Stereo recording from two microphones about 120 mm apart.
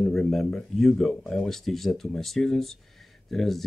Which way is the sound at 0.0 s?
Centre (ahead or behind).